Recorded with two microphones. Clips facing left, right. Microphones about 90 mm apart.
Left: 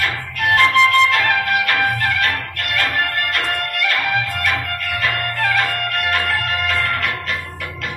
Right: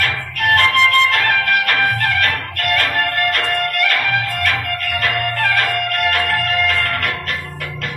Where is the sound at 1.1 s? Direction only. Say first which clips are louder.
Right 1 dB; 45° right (ahead or behind).